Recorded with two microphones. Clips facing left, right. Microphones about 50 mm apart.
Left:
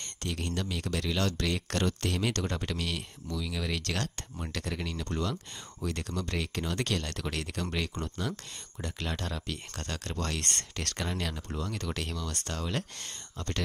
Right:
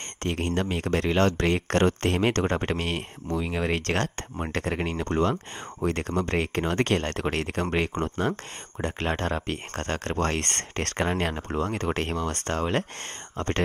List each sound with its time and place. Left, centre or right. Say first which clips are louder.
0.2 s speech: right 8 dB; right